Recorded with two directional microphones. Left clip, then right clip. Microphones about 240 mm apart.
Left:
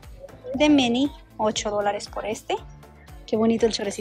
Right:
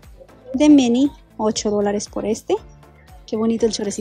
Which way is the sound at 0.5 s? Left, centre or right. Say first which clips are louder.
Right 5 dB; right.